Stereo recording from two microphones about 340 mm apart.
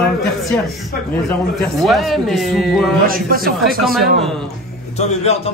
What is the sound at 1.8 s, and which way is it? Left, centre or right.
Speech, centre.